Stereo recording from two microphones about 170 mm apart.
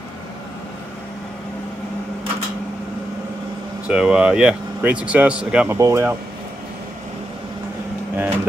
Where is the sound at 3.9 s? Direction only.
5° right (ahead or behind).